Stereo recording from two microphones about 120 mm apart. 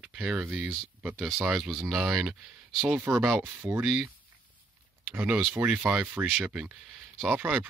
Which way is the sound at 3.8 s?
5° right (ahead or behind).